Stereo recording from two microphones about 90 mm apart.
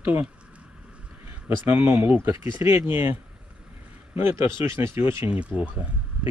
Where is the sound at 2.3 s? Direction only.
35° right (ahead or behind).